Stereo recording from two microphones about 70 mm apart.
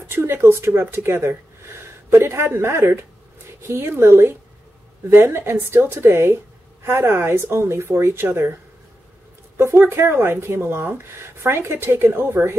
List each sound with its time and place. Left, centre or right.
0.0 s a woman's voice: right
9.6 s a woman's voice: right